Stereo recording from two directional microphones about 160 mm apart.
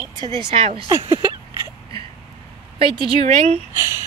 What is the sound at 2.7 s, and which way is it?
Speech, 35° right (ahead or behind).